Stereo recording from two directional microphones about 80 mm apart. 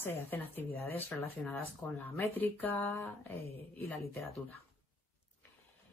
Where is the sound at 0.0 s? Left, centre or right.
Left.